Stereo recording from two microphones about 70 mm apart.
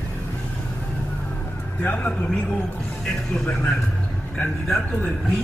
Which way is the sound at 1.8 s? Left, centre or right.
Left.